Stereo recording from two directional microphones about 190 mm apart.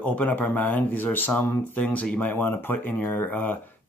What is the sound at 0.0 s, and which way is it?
Speech, 10° left (ahead or behind).